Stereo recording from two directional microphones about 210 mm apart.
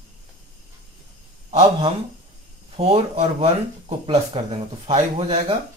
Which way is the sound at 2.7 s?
30° right (ahead or behind).